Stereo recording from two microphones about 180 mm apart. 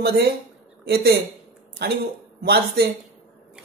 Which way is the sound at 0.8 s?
60° right (ahead or behind).